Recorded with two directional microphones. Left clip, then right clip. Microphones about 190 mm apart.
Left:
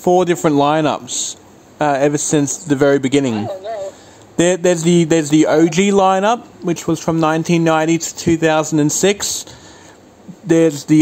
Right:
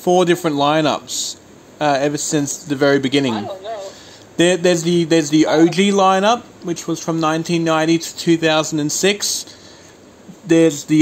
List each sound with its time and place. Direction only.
0.0 s a man's voice: 30° left (ahead or behind)
10.4 s a man's voice: 30° left (ahead or behind)